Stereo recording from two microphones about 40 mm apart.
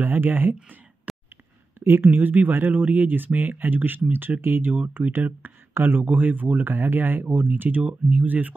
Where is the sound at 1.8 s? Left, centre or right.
Right.